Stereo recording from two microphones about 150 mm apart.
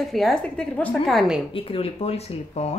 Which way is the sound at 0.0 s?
Centre (ahead or behind).